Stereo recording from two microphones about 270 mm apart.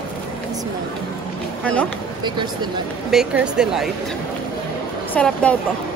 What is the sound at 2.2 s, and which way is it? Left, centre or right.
Speech, centre.